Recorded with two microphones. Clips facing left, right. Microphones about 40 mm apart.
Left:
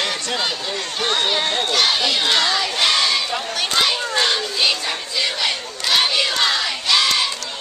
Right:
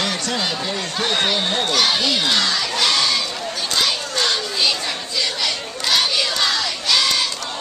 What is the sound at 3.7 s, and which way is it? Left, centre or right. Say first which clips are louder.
Crowd: left 2 dB; centre.